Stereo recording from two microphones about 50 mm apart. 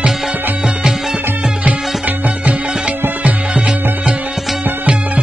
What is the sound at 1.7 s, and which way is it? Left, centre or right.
Music, right.